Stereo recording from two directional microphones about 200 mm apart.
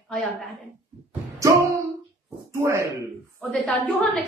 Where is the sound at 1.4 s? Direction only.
15° right (ahead or behind).